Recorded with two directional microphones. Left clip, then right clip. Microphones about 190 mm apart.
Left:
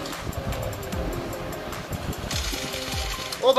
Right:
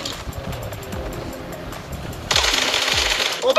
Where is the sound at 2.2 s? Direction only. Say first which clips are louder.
Right 14 dB; 60° right (ahead or behind).